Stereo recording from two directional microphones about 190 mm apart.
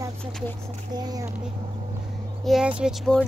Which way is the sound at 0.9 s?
20° right (ahead or behind).